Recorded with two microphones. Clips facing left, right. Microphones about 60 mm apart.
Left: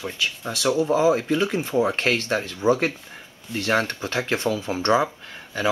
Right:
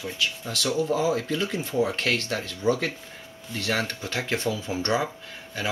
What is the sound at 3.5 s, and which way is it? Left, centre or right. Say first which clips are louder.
Speech: left 5 dB; left.